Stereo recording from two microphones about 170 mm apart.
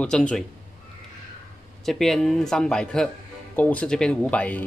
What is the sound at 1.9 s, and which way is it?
Speech, centre (ahead or behind).